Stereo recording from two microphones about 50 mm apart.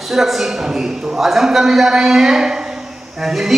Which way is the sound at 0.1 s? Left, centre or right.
Centre.